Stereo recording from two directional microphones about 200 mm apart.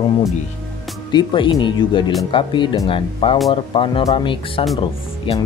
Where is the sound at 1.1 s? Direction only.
25° left (ahead or behind).